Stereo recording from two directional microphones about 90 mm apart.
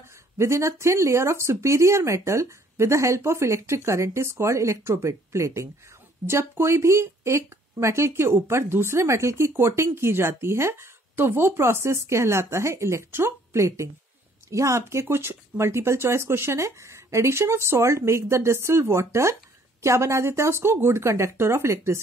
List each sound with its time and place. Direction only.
0.4 s speech: 30° right (ahead or behind)